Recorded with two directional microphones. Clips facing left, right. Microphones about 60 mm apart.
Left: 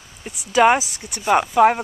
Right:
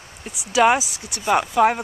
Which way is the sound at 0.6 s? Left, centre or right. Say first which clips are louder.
Left 2 dB; centre.